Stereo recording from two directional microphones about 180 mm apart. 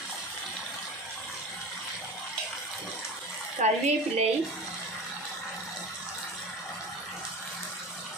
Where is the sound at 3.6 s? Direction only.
40° right (ahead or behind).